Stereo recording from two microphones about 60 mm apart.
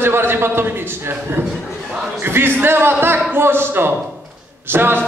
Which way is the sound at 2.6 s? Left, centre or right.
Right.